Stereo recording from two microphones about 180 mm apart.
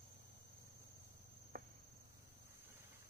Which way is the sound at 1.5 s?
55° right (ahead or behind).